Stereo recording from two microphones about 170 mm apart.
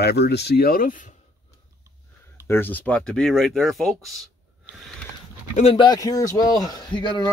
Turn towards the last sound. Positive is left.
turn(degrees=25)  # may be behind; listen again after turning